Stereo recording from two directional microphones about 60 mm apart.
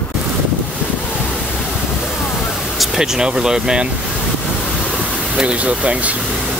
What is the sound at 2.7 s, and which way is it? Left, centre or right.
Speech, centre.